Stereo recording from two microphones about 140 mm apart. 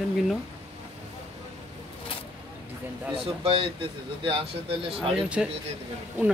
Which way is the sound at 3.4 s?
40° right (ahead or behind).